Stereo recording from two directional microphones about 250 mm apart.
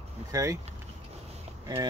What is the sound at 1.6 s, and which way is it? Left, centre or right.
Speech, centre.